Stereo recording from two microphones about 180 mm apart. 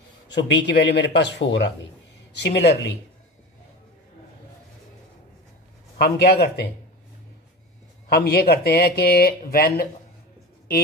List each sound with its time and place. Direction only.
0.3 s speech: 75° left (ahead or behind)
2.3 s speech: 70° left (ahead or behind)
5.9 s speech: 60° left (ahead or behind)
8.1 s speech: 60° left (ahead or behind)